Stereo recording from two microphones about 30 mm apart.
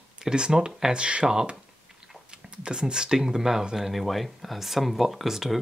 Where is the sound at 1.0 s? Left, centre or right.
Right.